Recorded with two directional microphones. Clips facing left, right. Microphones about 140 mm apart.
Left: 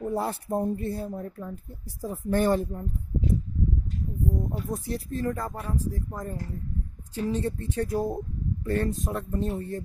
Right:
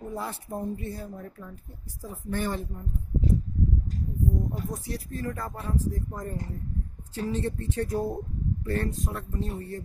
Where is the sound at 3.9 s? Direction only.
40° right (ahead or behind).